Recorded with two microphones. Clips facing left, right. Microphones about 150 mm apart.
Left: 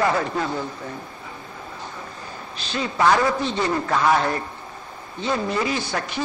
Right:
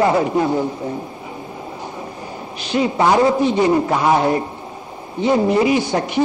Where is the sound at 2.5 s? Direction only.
15° right (ahead or behind).